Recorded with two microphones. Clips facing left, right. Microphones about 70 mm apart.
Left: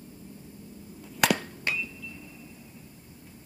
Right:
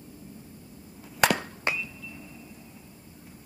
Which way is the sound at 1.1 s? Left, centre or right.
Centre.